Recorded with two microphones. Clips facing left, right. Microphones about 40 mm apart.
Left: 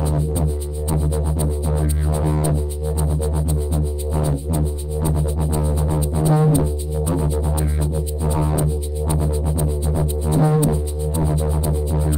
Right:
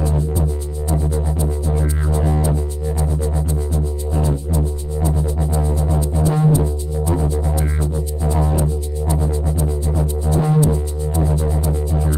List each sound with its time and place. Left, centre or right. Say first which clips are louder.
5.0 s music: right 1 dB; centre
9.1 s music: right 1 dB; left